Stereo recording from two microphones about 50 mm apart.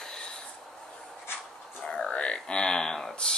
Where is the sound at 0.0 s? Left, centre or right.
Centre.